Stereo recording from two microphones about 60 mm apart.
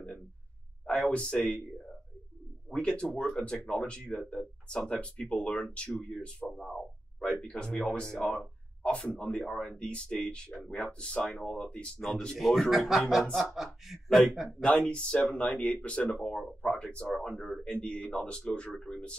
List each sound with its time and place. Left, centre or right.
0.8 s speech: centre
12.4 s speech: centre
14.9 s speech: centre